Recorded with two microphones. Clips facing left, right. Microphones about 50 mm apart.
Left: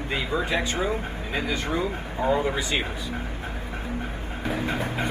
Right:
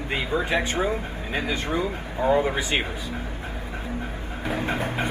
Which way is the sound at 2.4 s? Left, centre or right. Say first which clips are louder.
Right 1 dB; right.